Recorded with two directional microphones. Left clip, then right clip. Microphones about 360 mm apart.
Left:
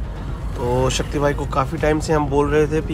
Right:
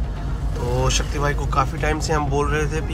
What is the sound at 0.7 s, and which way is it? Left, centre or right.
Speech, centre.